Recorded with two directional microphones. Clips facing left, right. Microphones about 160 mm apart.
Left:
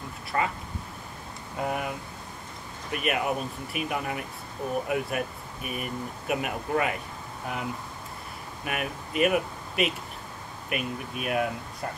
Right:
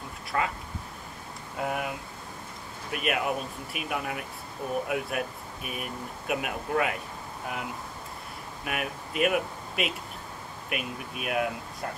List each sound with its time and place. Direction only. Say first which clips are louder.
0.3 s speech: left 1 dB; 5° left (ahead or behind)
1.6 s speech: left 1 dB; centre (ahead or behind)
8.6 s speech: left 1 dB; centre (ahead or behind)